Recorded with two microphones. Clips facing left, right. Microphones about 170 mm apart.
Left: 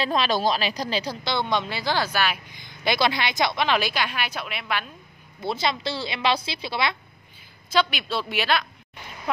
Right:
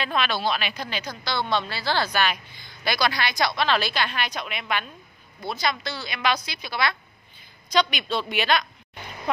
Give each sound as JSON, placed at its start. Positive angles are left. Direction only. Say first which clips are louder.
{"t": 0.0, "sound": "speech", "louder": "left 3 dB", "side_deg": 35}
{"t": 1.2, "sound": "a woman's voice", "louder": "right 2 dB", "side_deg": 20}
{"t": 2.5, "sound": "a woman's voice", "louder": "left 3 dB", "side_deg": 20}
{"t": 5.4, "sound": "a woman's voice", "louder": "left 2 dB", "side_deg": 25}
{"t": 7.7, "sound": "a woman's voice", "louder": "even", "side_deg": 5}